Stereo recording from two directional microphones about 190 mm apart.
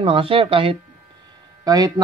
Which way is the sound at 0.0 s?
30° right (ahead or behind).